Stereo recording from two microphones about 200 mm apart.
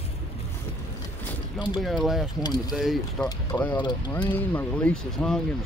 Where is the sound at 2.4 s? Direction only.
20° left (ahead or behind).